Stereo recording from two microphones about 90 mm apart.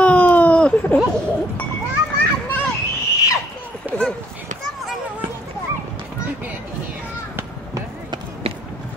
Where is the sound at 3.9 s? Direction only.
20° right (ahead or behind).